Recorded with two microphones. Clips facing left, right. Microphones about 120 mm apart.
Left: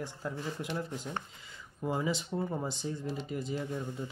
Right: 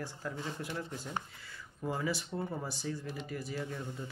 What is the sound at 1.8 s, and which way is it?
Speech, 20° left (ahead or behind).